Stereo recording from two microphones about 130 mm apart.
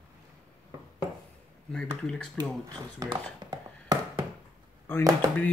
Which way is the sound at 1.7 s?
5° left (ahead or behind).